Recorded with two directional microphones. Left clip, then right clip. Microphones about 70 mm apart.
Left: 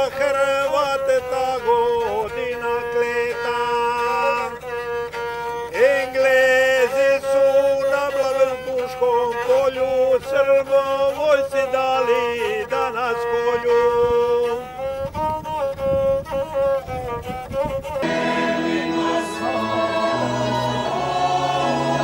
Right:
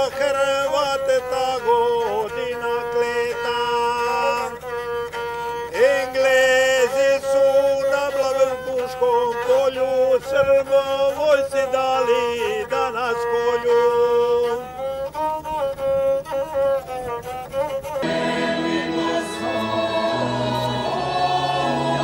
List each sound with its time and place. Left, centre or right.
0.0 s music: centre
2.7 s mantra: centre
5.8 s music: centre
18.0 s music: centre